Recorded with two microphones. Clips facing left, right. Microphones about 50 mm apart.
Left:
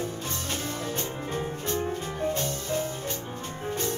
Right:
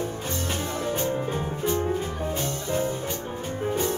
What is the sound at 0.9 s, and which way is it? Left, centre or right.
Music, centre.